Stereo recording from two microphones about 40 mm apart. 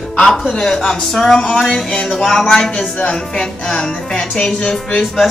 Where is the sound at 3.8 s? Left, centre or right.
Centre.